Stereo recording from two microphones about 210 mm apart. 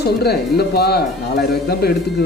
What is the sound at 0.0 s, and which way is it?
Speech, 50° left (ahead or behind).